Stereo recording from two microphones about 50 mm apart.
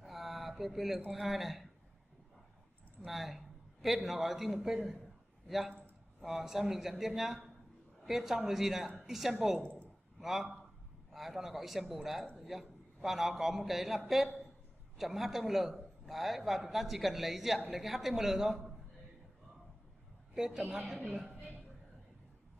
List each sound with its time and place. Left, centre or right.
0.0 s a sound: centre
1.1 s a man's voice: centre
3.1 s a man's voice: centre
6.2 s a man's voice: centre
9.6 s speech: left
10.2 s a man's voice: centre
20.3 s a woman's voice: centre